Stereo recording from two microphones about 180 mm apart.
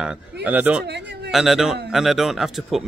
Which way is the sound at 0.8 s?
70° right (ahead or behind).